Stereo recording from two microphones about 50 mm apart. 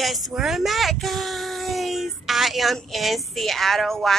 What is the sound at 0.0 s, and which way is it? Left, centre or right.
Speech, centre.